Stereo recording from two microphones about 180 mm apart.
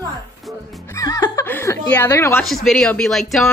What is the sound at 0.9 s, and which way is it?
Chuckle, 20° left (ahead or behind).